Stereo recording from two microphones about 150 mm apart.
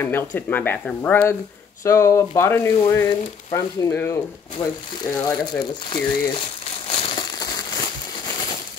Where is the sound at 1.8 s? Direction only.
20° left (ahead or behind).